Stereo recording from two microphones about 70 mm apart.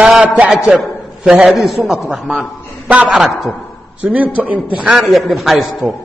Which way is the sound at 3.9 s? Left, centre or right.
Right.